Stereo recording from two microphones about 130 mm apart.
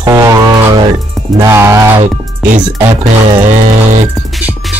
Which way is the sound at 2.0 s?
70° right (ahead or behind).